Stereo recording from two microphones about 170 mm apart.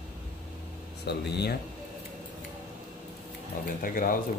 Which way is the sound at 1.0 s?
80° left.